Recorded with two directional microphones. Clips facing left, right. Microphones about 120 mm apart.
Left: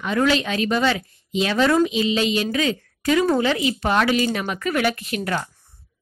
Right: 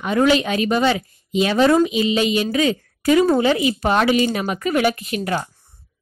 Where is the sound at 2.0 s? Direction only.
15° right (ahead or behind).